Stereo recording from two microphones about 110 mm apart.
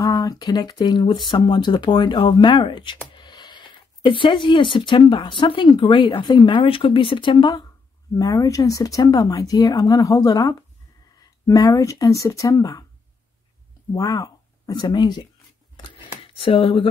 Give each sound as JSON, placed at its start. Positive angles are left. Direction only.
{"t": 0.2, "sound": "speech", "side_deg": 35}
{"t": 8.2, "sound": "speech", "side_deg": 35}
{"t": 13.9, "sound": "speech", "side_deg": 35}